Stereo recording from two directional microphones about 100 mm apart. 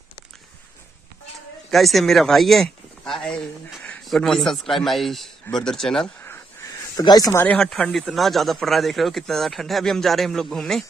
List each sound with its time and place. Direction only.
1.7 s speech: centre (ahead or behind)
7.0 s speech: 40° left (ahead or behind)
7.4 s speech: 5° left (ahead or behind)